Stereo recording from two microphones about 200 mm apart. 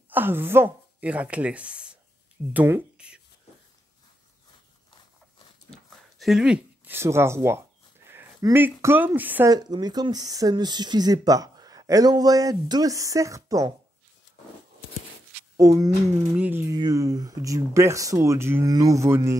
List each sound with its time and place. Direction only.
0.1 s speech: 10° right (ahead or behind)
6.1 s speech: centre (ahead or behind)
9.5 s speech: 20° right (ahead or behind)
15.5 s speech: 15° right (ahead or behind)